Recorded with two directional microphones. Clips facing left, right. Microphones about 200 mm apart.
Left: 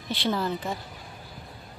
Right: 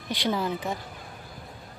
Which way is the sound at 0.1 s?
15° right (ahead or behind).